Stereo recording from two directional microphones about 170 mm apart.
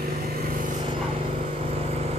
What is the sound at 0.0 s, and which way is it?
Vehicle, 60° right (ahead or behind).